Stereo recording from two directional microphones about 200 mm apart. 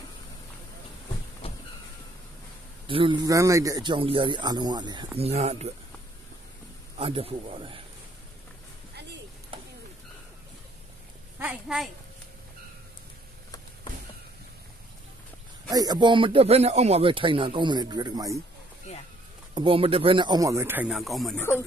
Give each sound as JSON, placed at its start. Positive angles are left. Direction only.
{"t": 2.9, "sound": "speech", "side_deg": -25}
{"t": 7.0, "sound": "speech", "side_deg": -30}
{"t": 9.5, "sound": "a sound", "side_deg": -30}
{"t": 11.3, "sound": "a child's voice", "side_deg": -5}
{"t": 15.7, "sound": "speech", "side_deg": -20}
{"t": 19.5, "sound": "speech", "side_deg": -25}
{"t": 21.4, "sound": "speech", "side_deg": 10}